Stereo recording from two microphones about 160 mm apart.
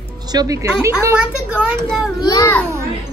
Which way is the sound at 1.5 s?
5° right (ahead or behind).